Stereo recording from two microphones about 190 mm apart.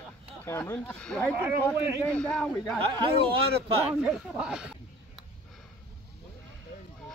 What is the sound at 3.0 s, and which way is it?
Speech, 25° right (ahead or behind).